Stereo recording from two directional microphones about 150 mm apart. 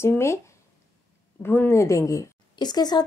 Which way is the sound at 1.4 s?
15° left (ahead or behind).